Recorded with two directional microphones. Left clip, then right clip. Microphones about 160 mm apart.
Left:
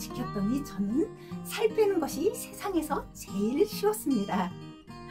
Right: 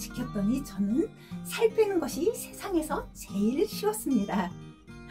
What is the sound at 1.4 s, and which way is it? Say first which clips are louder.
Speech: right 1 dB; 25° left (ahead or behind).